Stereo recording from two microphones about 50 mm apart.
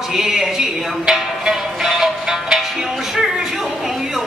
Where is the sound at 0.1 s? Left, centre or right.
Centre.